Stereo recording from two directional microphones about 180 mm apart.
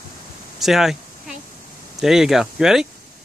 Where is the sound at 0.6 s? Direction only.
Centre (ahead or behind).